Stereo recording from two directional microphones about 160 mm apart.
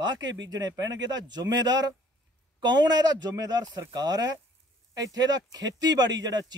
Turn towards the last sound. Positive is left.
turn(degrees=-25)  # may be behind; listen again after turning